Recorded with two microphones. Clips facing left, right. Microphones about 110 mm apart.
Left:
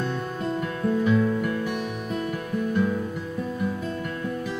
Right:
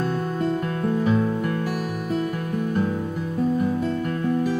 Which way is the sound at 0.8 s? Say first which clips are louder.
Even; 35° right (ahead or behind).